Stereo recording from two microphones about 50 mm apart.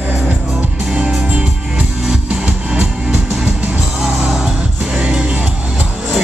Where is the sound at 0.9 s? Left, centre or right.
Right.